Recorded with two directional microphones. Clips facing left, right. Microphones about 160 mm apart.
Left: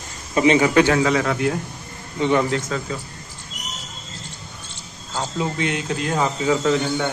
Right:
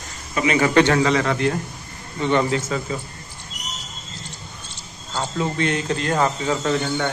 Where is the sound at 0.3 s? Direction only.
30° left (ahead or behind).